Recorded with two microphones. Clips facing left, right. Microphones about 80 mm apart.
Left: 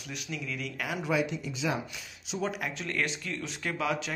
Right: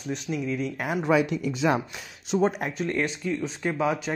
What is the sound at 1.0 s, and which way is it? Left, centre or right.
Speech, right.